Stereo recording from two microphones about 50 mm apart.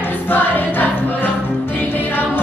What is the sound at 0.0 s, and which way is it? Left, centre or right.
Music, left.